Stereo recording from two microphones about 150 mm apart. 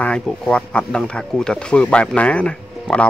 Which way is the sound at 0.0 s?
5° left (ahead or behind).